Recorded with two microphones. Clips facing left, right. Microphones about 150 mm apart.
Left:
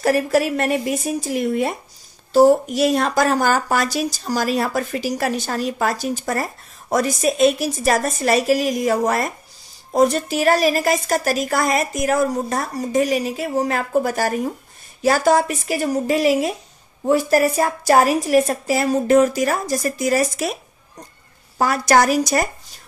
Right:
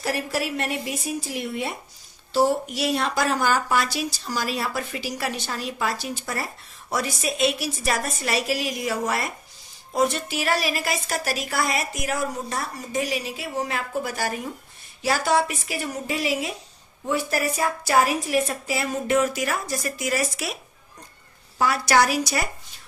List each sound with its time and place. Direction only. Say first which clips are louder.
0.0 s a woman's voice: left 9 dB; 45° left (ahead or behind)
21.5 s speech: left 4 dB; 45° left (ahead or behind)